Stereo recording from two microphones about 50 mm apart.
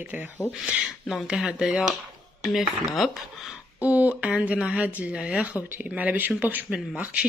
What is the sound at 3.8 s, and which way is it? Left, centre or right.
Speech, right.